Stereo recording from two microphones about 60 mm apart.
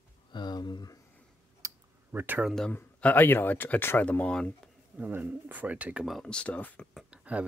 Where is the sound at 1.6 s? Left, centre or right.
Right.